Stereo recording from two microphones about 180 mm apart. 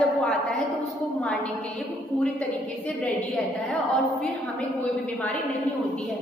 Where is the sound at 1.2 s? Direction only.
5° left (ahead or behind).